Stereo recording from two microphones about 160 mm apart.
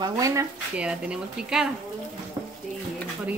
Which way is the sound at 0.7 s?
5° right (ahead or behind).